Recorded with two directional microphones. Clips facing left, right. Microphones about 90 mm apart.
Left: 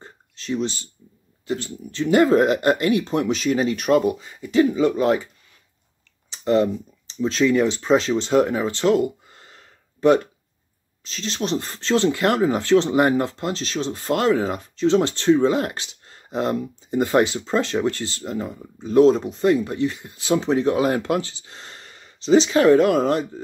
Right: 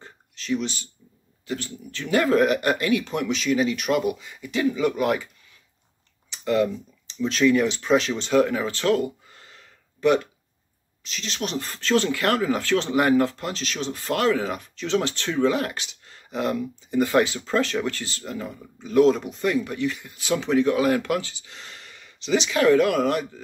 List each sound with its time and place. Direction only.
0.0 s a sound: 35° left (ahead or behind)
1.5 s speech: 30° left (ahead or behind)
6.3 s speech: 30° left (ahead or behind)